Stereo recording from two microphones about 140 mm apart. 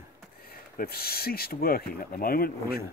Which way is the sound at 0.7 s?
90° left.